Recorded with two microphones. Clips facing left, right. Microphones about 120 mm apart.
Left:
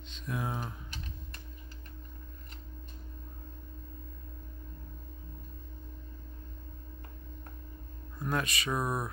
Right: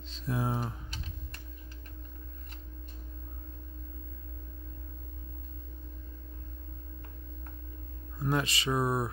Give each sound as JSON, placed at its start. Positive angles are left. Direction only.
{"t": 0.1, "sound": "speech", "side_deg": -35}
{"t": 8.2, "sound": "speech", "side_deg": -25}